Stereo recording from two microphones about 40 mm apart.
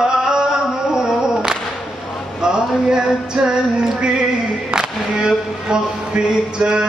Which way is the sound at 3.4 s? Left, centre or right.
Centre.